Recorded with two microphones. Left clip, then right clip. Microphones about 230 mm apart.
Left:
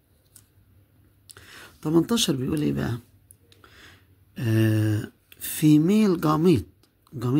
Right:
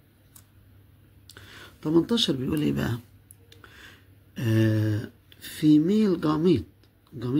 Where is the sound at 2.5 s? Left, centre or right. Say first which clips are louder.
Even; centre.